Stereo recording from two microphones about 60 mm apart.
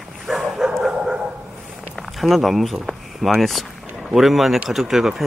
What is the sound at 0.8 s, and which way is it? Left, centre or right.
Dog, centre.